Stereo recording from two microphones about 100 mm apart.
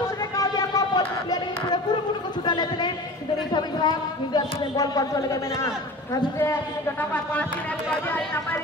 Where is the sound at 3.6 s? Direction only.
45° left (ahead or behind); by 6.5 s 30° left (ahead or behind).